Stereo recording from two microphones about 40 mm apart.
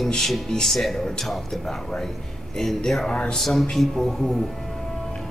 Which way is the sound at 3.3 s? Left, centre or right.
Centre.